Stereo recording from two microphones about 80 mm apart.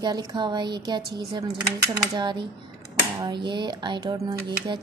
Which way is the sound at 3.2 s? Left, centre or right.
Right.